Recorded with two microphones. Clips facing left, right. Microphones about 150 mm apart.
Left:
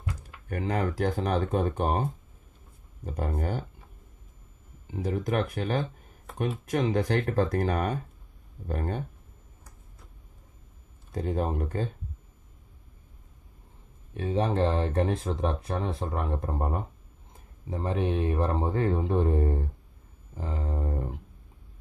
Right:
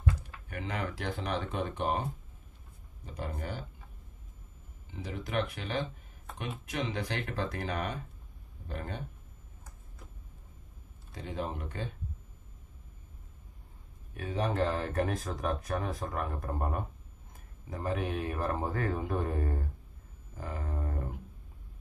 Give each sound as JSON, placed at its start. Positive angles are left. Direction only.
{"t": 0.5, "sound": "speech", "side_deg": 40}
{"t": 3.1, "sound": "speech", "side_deg": 50}
{"t": 4.9, "sound": "speech", "side_deg": 45}
{"t": 11.1, "sound": "speech", "side_deg": 45}
{"t": 14.1, "sound": "speech", "side_deg": 30}